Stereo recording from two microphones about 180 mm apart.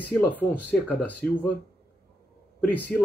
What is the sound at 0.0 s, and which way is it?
Speech, 10° left (ahead or behind).